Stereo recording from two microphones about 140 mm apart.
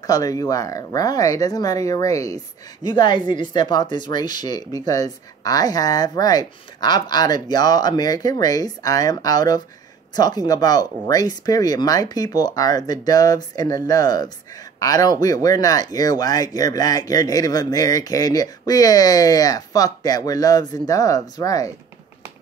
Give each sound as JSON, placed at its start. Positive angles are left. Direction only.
{"t": 0.0, "sound": "speech", "side_deg": 25}